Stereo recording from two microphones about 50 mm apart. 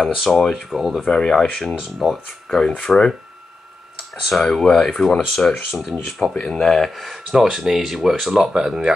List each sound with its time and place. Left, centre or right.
0.0 s speech: centre
0.7 s speech: centre
1.0 s speech: centre
2.0 s speech: centre
2.9 s speech: centre
4.3 s speech: centre
5.7 s speech: centre
7.3 s speech: centre